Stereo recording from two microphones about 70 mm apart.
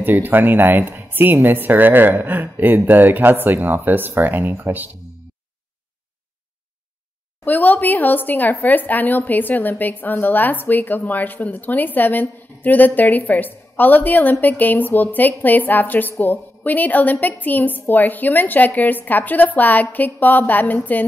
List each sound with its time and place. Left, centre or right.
0.0 s speech: right
7.4 s a woman's voice: left